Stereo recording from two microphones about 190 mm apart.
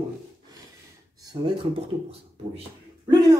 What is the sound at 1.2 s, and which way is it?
Speech, 25° right (ahead or behind).